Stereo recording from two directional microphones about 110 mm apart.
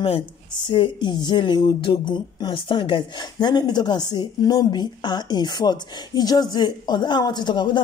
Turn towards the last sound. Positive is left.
turn(degrees=45)  # may be behind; listen again after turning